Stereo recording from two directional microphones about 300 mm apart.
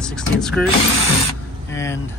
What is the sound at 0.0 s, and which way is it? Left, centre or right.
Mechanisms, centre.